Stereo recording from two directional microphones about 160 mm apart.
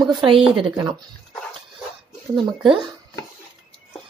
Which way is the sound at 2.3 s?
30° right (ahead or behind).